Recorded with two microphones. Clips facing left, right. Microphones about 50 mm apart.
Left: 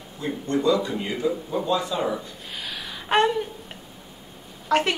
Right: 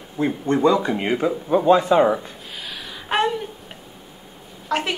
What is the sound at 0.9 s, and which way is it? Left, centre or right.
Speech, right.